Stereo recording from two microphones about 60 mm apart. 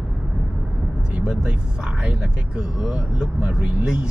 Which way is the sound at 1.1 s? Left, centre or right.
Centre.